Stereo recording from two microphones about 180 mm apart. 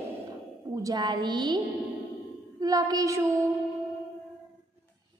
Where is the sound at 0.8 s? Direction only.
25° right (ahead or behind).